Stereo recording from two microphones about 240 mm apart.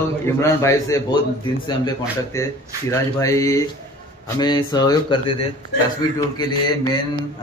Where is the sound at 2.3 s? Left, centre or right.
Centre.